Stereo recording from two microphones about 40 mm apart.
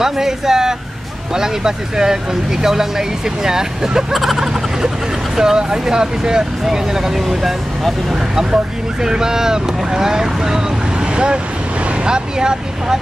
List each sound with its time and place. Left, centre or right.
0.0 s vehicle: centre
1.3 s speech: centre
4.1 s speech: centre
4.8 s speech: centre
8.1 s speech: centre